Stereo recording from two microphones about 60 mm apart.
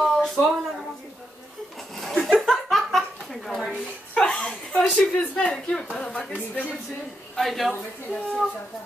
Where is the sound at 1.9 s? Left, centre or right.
Centre.